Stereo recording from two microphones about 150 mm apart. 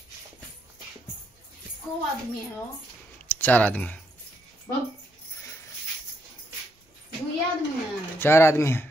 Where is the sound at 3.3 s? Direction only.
10° left (ahead or behind).